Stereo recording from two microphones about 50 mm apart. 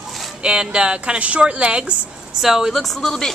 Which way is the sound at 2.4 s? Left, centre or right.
Centre.